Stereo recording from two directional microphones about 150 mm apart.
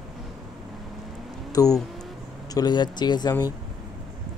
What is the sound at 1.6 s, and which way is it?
Speech, 25° left (ahead or behind).